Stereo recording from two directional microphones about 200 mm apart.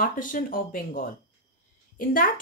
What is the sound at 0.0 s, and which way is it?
Speech, 40° left (ahead or behind).